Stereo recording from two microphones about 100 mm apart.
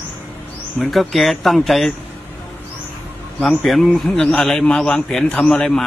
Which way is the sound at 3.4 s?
5° left (ahead or behind).